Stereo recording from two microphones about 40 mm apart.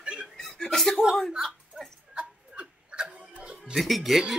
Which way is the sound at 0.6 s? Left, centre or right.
Centre.